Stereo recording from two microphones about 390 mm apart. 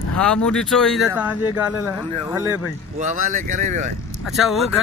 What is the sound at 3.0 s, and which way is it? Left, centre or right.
Speech, centre.